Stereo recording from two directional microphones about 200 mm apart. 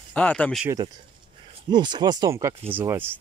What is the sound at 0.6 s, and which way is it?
Speech, 20° right (ahead or behind).